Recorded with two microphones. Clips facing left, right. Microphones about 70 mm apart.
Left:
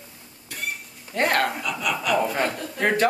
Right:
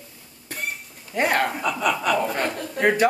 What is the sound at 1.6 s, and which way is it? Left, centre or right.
Chuckle, right.